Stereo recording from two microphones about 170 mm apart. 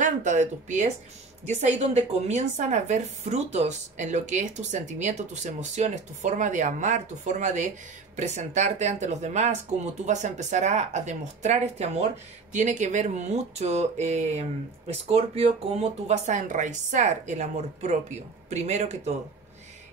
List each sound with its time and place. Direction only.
0.0 s a woman's voice: 45° right (ahead or behind)